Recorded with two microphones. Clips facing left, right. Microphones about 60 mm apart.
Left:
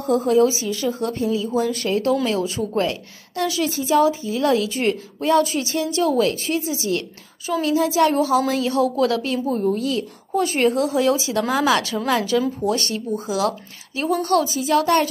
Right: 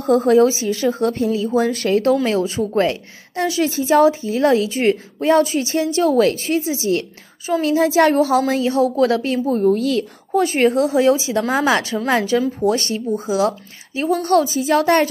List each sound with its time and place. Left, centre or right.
0.0 s a woman's voice: right
7.6 s a woman's voice: right
8.5 s a woman's voice: right
9.7 s a woman's voice: right
10.3 s a woman's voice: right
10.7 s speech: right
14.2 s a woman's voice: right